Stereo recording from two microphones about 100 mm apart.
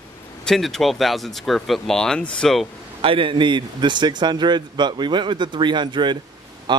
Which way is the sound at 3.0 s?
60° right (ahead or behind).